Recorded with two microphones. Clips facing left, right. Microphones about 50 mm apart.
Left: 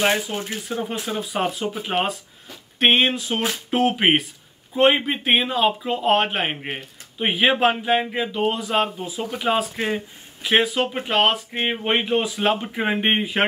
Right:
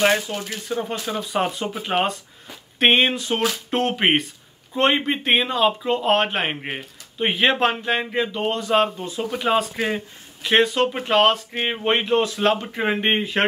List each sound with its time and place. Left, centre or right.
0.3 s speech: centre
1.0 s speech: centre